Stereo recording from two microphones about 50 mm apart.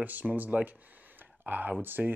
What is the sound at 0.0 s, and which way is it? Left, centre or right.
Speech, right.